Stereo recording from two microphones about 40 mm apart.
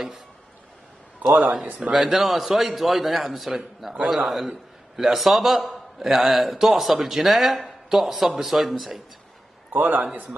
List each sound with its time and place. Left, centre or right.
1.2 s a man's voice: right
1.8 s a man's voice: centre
9.7 s a man's voice: right